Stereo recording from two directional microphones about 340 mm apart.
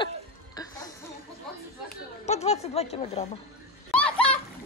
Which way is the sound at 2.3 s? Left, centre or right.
Centre.